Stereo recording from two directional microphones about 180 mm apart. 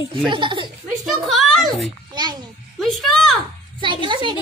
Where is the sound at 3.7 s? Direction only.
25° right (ahead or behind).